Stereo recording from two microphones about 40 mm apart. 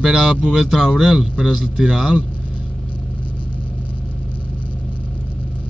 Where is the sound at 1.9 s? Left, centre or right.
Right.